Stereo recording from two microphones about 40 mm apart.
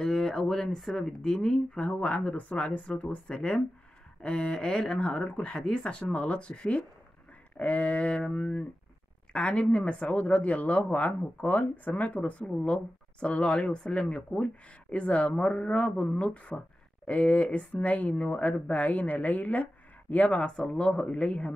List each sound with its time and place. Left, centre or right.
0.0 s speech: centre
0.7 s speech: centre
1.2 s speech: centre
1.8 s speech: left
5.6 s speech: centre
5.9 s speech: left
7.5 s speech: left
20.3 s speech: left